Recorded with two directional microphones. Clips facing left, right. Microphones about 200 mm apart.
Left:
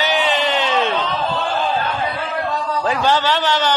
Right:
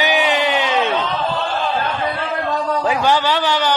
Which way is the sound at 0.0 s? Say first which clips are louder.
Right 1 dB; 15° right (ahead or behind).